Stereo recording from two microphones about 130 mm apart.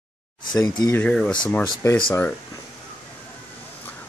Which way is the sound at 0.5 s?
35° left (ahead or behind).